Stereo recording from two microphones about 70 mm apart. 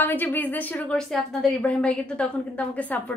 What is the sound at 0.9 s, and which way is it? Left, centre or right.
A woman's voice, centre.